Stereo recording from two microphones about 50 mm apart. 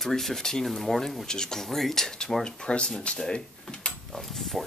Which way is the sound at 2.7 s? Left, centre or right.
Left.